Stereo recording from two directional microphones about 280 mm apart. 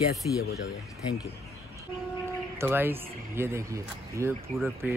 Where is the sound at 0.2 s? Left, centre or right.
Centre.